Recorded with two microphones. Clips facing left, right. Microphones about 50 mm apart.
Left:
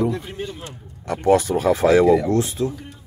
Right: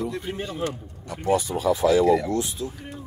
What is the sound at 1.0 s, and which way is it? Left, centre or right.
Speech, left.